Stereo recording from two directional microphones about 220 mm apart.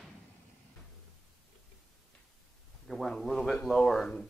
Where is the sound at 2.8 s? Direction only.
Centre (ahead or behind).